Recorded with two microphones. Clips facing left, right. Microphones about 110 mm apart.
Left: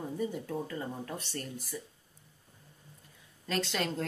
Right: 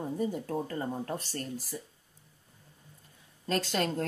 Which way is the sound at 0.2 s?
45° right (ahead or behind).